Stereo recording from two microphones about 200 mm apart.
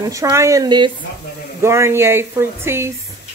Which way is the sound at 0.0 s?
15° right (ahead or behind).